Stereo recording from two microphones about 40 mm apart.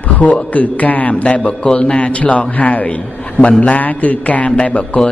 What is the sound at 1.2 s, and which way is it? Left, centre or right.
A man's voice, left.